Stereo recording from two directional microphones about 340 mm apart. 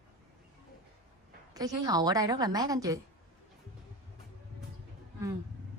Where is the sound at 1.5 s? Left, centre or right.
Centre.